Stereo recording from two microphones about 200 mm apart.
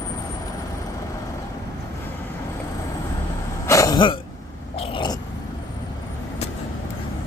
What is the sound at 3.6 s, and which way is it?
Throat clearing, 15° left (ahead or behind).